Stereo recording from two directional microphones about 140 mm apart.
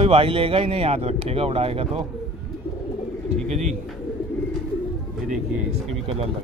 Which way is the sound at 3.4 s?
60° right (ahead or behind).